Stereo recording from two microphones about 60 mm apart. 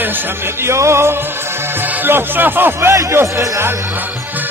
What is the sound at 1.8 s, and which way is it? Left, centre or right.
Music, right.